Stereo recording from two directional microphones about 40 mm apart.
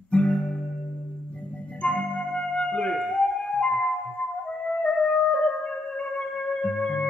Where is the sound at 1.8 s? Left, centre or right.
Left.